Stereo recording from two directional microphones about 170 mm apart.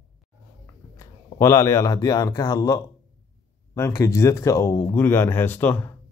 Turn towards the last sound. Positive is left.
turn(degrees=10)  # may be behind; listen again after turning